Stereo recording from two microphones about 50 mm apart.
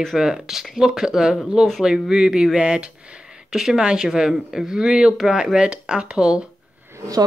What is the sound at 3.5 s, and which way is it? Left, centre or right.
Speech, centre.